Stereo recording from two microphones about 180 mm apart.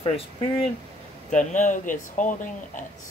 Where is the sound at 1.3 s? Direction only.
45° left (ahead or behind).